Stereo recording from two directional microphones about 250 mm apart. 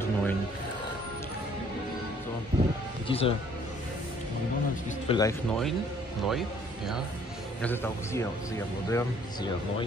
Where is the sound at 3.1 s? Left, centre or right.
Left.